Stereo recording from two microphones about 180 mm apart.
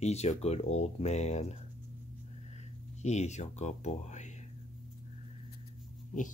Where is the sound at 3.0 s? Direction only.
40° left (ahead or behind).